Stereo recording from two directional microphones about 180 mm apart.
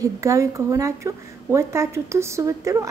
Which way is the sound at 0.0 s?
15° right (ahead or behind).